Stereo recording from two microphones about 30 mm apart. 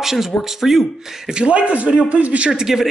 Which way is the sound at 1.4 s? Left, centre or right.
Right.